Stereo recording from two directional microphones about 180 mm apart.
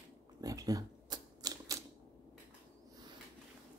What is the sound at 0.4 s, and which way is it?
Typewriter, 20° right (ahead or behind).